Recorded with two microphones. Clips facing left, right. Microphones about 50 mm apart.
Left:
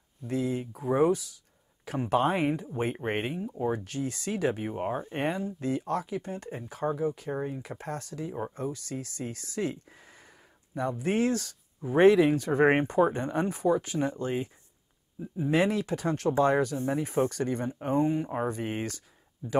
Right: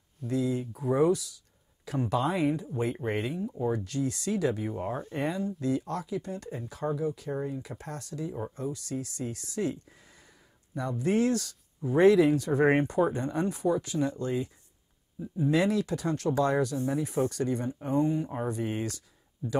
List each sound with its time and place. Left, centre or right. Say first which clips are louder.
0.3 s speech: right 1 dB; left
15.2 s speech: right 1 dB; left
15.5 s speech: left 1 dB; left
17.9 s speech: left 1 dB; left